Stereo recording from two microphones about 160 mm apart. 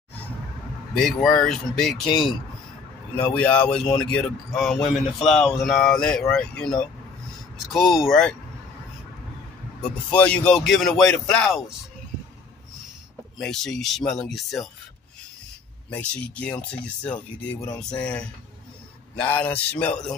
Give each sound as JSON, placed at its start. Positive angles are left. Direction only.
{"t": 0.9, "sound": "speech", "side_deg": 5}
{"t": 2.0, "sound": "speech", "side_deg": 30}
{"t": 3.3, "sound": "speech", "side_deg": 10}
{"t": 9.8, "sound": "speech", "side_deg": 10}
{"t": 13.4, "sound": "speech", "side_deg": 5}
{"t": 15.9, "sound": "speech", "side_deg": 5}